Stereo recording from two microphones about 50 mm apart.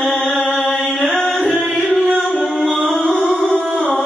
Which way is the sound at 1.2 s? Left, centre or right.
Centre.